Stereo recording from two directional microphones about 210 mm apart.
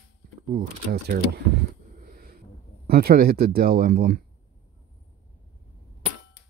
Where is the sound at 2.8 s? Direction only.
45° right (ahead or behind).